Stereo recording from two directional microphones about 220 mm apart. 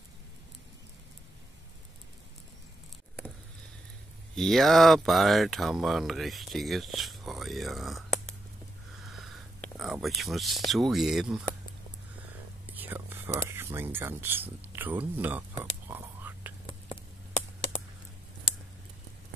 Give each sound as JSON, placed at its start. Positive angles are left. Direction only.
{"t": 4.4, "sound": "speech", "side_deg": 0}
{"t": 12.6, "sound": "speech", "side_deg": -10}
{"t": 15.9, "sound": "whispering", "side_deg": -10}
{"t": 16.6, "sound": "a sound", "side_deg": 25}